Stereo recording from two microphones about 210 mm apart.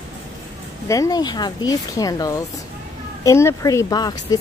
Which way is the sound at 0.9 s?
15° left (ahead or behind).